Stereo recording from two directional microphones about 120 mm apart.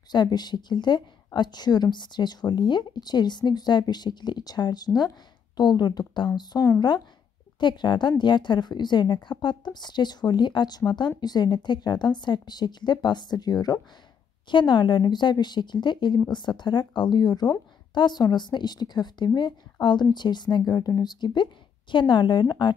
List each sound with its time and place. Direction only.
0.1 s a woman's voice: 35° left (ahead or behind)